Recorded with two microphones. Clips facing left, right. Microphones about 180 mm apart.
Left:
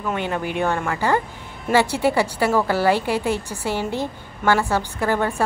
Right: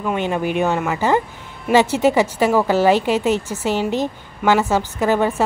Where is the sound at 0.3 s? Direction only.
15° right (ahead or behind).